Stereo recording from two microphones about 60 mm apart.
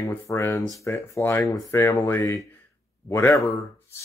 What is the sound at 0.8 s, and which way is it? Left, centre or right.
Speech, left.